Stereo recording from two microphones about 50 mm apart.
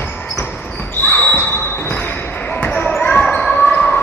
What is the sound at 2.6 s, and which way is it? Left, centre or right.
Basketball bounce, left.